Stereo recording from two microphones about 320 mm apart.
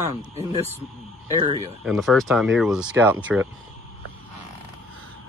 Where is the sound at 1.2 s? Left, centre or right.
Centre.